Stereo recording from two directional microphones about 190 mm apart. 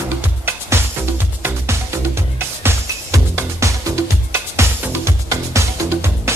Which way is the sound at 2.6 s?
15° right (ahead or behind).